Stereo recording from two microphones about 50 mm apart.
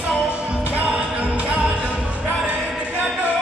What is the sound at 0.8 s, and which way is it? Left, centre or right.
Music, right.